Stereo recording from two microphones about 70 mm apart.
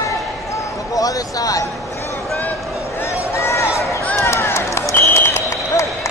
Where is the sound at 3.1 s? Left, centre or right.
Left.